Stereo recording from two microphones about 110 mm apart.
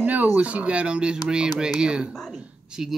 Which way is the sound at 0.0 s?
15° right (ahead or behind).